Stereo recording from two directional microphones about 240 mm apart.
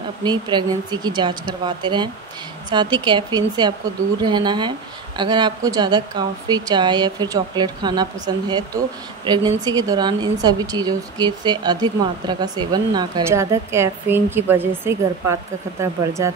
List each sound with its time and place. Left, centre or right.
0.2 s speech: centre